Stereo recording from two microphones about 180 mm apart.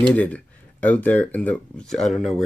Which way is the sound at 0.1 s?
10° left (ahead or behind).